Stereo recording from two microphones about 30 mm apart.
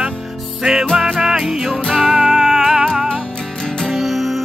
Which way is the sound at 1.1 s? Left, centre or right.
Centre.